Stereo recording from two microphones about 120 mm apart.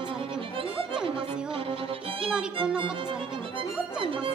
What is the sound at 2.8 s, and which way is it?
Violin, 45° right (ahead or behind).